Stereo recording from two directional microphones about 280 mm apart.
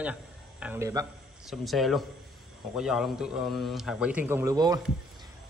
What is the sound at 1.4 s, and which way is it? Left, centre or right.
Speech, centre.